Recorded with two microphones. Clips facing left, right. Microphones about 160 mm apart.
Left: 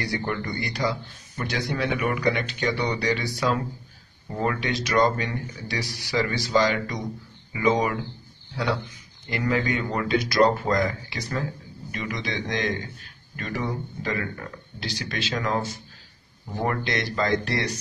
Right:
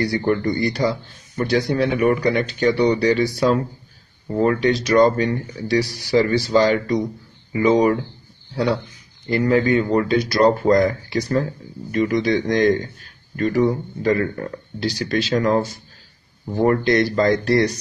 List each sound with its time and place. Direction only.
0.0 s a man's voice: 35° right (ahead or behind)
9.3 s a man's voice: 35° right (ahead or behind)